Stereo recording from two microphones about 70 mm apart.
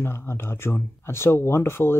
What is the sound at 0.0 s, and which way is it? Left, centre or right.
Speech, left.